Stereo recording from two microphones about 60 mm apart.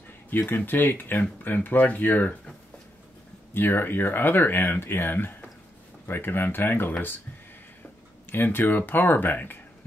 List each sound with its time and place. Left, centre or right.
0.3 s speech: left
3.5 s speech: left
8.3 s speech: left